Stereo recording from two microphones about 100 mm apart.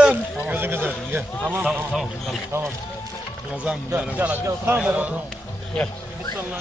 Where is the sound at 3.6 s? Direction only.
15° right (ahead or behind).